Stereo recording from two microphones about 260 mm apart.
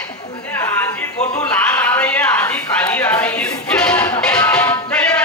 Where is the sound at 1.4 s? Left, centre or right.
Centre.